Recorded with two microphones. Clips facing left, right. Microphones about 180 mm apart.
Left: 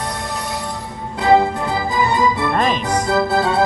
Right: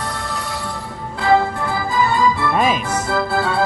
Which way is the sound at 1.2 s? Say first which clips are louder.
Left 2 dB; 20° left (ahead or behind).